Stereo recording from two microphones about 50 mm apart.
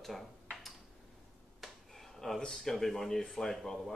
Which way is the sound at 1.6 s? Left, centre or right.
Centre.